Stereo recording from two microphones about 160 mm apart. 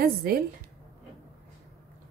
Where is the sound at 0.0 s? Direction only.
70° right (ahead or behind).